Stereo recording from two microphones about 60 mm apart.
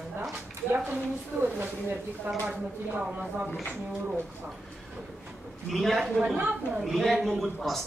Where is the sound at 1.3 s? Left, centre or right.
Right.